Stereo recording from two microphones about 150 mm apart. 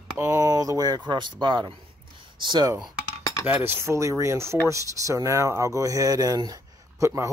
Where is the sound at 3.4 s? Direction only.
15° right (ahead or behind).